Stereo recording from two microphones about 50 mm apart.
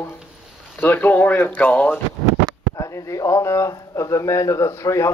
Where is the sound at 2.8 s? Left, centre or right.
Left.